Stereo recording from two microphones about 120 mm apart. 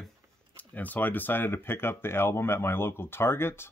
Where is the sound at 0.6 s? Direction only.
15° left (ahead or behind).